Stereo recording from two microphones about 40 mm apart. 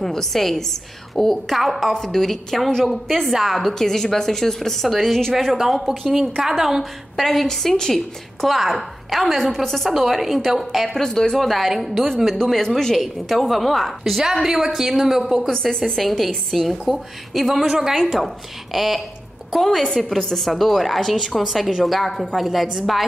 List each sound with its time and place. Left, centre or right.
0.0 s a woman's voice: centre
2.0 s a woman's voice: centre
11.0 s a woman's voice: centre
11.3 s a woman's voice: centre
14.2 s a woman's voice: centre
15.9 s a woman's voice: centre
16.6 s a woman's voice: centre